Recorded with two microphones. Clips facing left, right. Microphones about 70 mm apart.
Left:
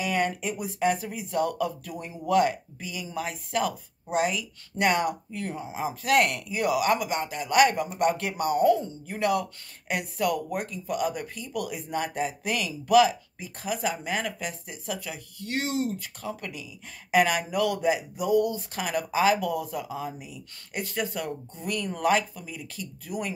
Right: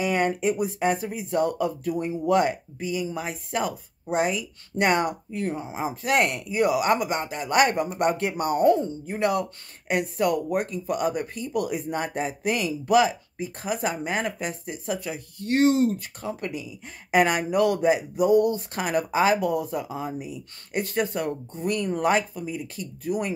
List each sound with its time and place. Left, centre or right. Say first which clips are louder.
0.0 s speech: right 4 dB; right
16.2 s speech: right 4 dB; right